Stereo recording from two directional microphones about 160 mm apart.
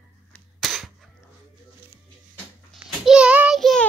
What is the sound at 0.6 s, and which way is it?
Cap gun, centre (ahead or behind).